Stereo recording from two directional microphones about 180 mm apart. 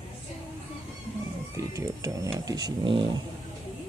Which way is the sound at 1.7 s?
20° right (ahead or behind).